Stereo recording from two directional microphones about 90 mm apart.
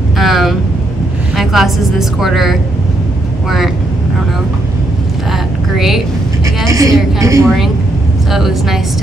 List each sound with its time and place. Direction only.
0.2 s vehicle: centre (ahead or behind)
1.3 s a woman's voice: centre (ahead or behind)
5.8 s speech: 5° right (ahead or behind)
6.7 s a woman's voice: 35° right (ahead or behind)
8.3 s a woman's voice: 5° right (ahead or behind)